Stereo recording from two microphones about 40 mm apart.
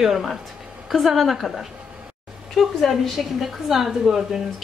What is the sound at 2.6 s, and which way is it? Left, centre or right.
Speech, centre.